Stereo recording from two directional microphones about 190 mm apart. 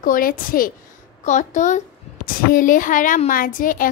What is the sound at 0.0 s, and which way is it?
A woman's voice, 50° left (ahead or behind).